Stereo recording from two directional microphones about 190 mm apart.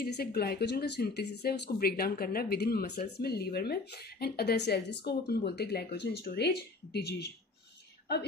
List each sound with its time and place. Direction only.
0.0 s speech: 55° left (ahead or behind)